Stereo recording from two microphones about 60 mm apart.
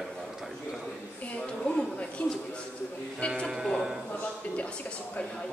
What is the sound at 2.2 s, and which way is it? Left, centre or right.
A woman's voice, centre.